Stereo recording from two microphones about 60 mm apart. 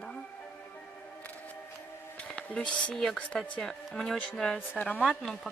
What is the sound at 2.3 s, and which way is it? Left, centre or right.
A woman's voice, centre.